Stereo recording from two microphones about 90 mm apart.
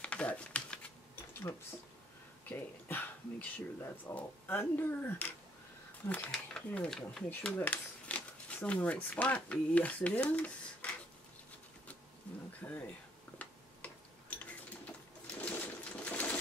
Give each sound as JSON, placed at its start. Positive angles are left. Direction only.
{"t": 0.0, "sound": "typing", "side_deg": 15}
{"t": 2.5, "sound": "speech", "side_deg": 20}
{"t": 6.3, "sound": "speech", "side_deg": 5}
{"t": 7.2, "sound": "speech", "side_deg": 20}
{"t": 12.6, "sound": "speech", "side_deg": 25}
{"t": 15.3, "sound": "sewing machine", "side_deg": 15}